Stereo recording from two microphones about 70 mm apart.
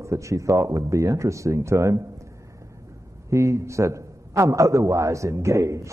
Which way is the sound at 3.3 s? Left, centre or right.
Right.